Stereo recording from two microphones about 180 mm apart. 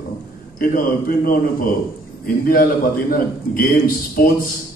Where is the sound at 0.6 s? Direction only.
50° left (ahead or behind).